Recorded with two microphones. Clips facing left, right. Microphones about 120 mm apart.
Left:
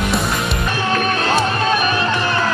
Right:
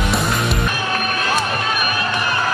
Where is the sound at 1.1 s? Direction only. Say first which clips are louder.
Left 3 dB; 30° left (ahead or behind).